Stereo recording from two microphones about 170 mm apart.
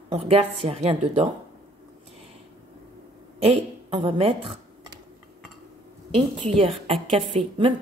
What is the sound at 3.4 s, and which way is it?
Speech, 35° right (ahead or behind).